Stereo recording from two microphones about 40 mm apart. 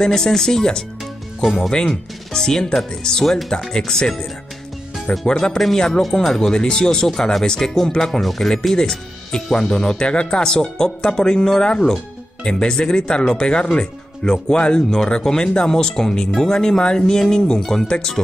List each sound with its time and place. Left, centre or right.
0.0 s speech: centre
5.3 s speech: left